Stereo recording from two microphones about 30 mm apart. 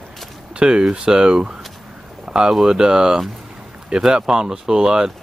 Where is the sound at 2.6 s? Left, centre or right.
Right.